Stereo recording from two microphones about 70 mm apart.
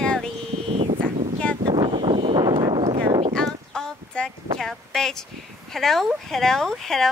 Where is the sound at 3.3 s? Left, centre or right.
Centre.